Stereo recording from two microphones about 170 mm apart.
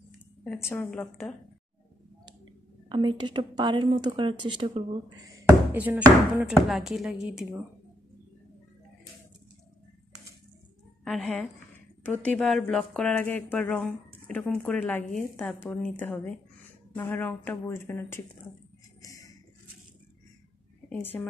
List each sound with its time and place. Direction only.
0.7 s speech: 10° left (ahead or behind)
2.9 s speech: 30° right (ahead or behind)
5.3 s speech: 10° right (ahead or behind)
11.1 s speech: 5° left (ahead or behind)
18.9 s music: 20° left (ahead or behind)
20.9 s speech: 10° left (ahead or behind)